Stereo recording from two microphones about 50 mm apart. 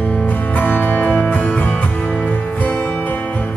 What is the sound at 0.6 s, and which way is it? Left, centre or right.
Music, left.